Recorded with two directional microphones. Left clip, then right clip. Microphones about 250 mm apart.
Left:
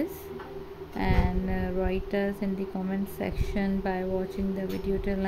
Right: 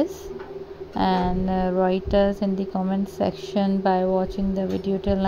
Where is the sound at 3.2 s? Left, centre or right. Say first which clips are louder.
Right 10 dB; centre.